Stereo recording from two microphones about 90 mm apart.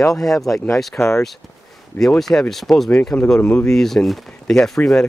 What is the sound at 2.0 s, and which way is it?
Speech, 5° left (ahead or behind).